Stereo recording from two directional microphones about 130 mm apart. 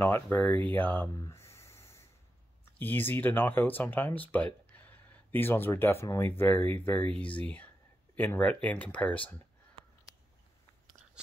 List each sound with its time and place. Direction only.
0.0 s speech: 15° left (ahead or behind)
1.2 s snort: 20° left (ahead or behind)
2.8 s speech: 15° left (ahead or behind)
4.7 s a sound: 15° left (ahead or behind)
6.0 s speech: 15° left (ahead or behind)